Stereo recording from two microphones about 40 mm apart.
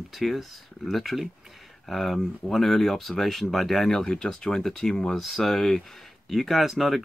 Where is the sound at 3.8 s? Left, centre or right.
Centre.